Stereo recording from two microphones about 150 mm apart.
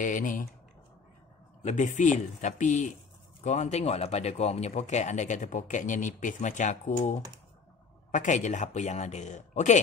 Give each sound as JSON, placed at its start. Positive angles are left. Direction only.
{"t": 0.0, "sound": "speech", "side_deg": 60}
{"t": 1.6, "sound": "speech", "side_deg": 50}